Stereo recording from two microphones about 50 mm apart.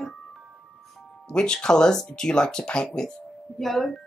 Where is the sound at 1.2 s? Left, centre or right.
Centre.